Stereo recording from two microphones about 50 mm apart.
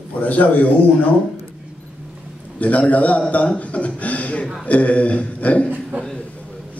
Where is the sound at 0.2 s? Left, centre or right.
Left.